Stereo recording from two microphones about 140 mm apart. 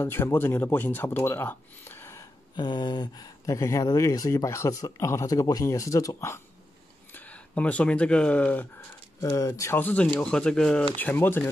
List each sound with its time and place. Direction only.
0.0 s speech: 15° left (ahead or behind)
2.5 s speech: 35° left (ahead or behind); by 8.6 s 10° left (ahead or behind)
9.2 s speech: 25° left (ahead or behind)